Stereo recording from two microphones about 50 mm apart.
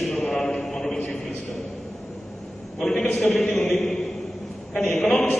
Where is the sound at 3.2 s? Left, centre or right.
Centre.